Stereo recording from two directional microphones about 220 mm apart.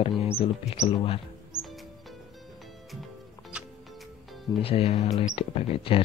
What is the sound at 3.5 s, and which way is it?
Music, 5° right (ahead or behind).